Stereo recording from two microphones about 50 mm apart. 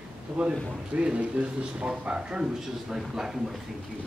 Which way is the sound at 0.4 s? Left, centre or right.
Right.